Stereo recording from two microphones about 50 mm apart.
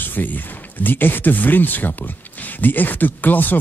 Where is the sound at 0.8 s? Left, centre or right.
Left.